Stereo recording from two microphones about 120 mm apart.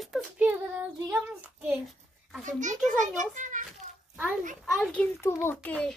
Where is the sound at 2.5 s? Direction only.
90° right.